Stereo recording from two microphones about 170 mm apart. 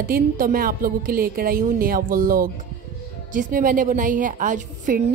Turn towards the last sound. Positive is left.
turn(degrees=-50)  # may be behind; listen again after turning